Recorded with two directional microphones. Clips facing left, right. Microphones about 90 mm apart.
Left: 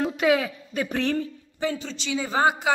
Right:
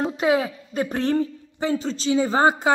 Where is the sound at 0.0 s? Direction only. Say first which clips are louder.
Right 1 dB; 30° right (ahead or behind).